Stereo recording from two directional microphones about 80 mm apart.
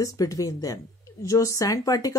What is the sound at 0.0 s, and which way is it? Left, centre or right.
Speech, left.